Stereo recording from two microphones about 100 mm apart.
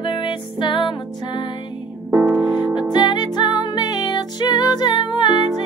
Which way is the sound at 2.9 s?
45° left (ahead or behind).